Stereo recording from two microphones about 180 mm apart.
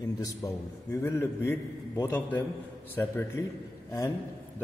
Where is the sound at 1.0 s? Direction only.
15° left (ahead or behind).